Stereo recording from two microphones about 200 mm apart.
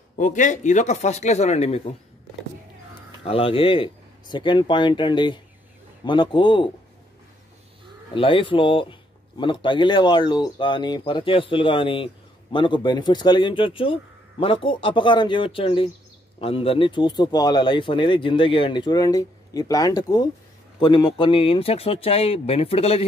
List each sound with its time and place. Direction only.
0.1 s speech: 40° left (ahead or behind)
3.3 s speech: 30° left (ahead or behind)
8.1 s speech: 25° left (ahead or behind)